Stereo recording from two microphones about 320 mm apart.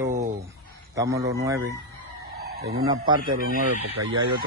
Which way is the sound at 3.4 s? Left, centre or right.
Right.